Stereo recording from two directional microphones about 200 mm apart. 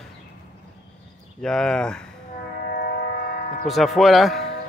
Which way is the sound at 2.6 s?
50° left (ahead or behind).